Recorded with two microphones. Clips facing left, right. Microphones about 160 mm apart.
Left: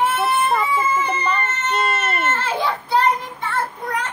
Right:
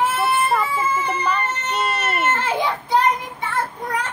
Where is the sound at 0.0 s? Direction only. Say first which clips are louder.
Left 1 dB; centre (ahead or behind).